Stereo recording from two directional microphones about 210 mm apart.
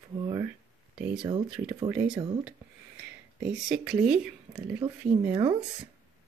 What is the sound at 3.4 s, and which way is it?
Speech, centre (ahead or behind).